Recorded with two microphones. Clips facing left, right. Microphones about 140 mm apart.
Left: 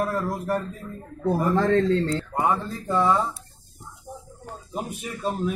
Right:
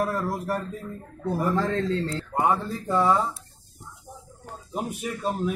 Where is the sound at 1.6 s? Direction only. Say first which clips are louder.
Left 5 dB; 60° left (ahead or behind).